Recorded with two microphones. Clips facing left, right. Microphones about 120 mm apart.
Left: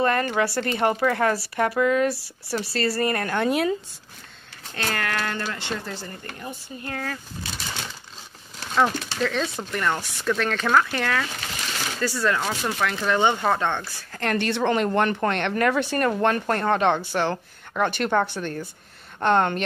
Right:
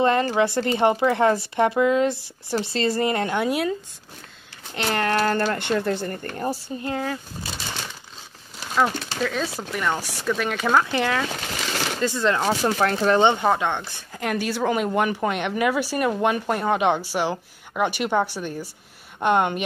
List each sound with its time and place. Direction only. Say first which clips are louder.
0.0 s speech: right 3 dB; 25° right (ahead or behind)
3.4 s speech: left 1 dB; centre (ahead or behind)
4.7 s speech: right 5 dB; 25° right (ahead or behind)
5.3 s speech: right 7 dB; 45° right (ahead or behind)
6.8 s speech: right 2 dB; 20° right (ahead or behind)
8.5 s speech: even; 5° right (ahead or behind); by 13.2 s 35° right (ahead or behind)
13.2 s speech: right 2 dB; 20° right (ahead or behind)
14.3 s speech: left 1 dB; 5° right (ahead or behind)